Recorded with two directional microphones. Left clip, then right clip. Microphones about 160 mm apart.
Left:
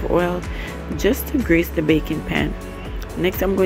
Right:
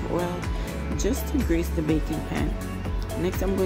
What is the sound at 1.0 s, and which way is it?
Speech, 20° left (ahead or behind).